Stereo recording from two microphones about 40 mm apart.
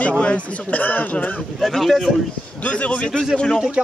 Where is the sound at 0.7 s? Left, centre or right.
Left.